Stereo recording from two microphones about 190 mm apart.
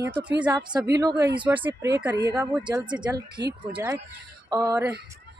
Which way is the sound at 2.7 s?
25° right (ahead or behind).